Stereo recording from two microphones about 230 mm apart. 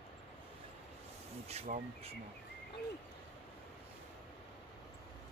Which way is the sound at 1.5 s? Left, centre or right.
Right.